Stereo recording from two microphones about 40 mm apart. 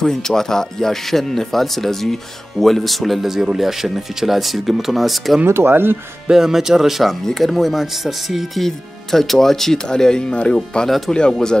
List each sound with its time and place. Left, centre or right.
0.0 s speech: centre
5.5 s speech: right
6.3 s speech: centre
8.5 s speech: centre; by 11.3 s left